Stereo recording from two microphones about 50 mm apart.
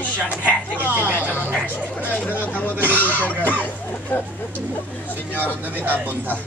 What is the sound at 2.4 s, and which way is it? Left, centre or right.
Speech, left.